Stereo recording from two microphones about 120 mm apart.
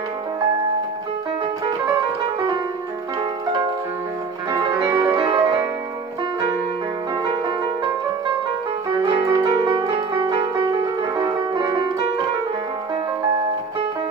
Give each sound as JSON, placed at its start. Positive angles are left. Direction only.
{"t": 4.8, "sound": "music", "side_deg": -15}
{"t": 5.1, "sound": "music", "side_deg": -35}
{"t": 9.2, "sound": "music", "side_deg": -30}